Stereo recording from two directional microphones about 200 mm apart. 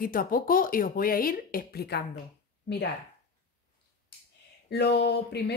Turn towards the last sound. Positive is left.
turn(degrees=55)  # may be behind; listen again after turning